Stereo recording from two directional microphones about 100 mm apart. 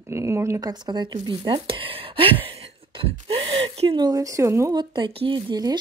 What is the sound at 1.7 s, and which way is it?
Speech, 65° right (ahead or behind).